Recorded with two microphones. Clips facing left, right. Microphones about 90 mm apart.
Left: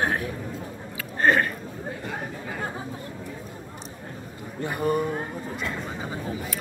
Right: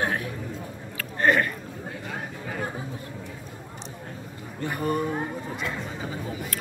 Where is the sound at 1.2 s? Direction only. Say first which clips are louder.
Left 1 dB; 30° left (ahead or behind).